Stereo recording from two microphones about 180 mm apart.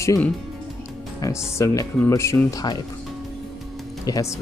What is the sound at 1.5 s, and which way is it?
Speech, 15° left (ahead or behind).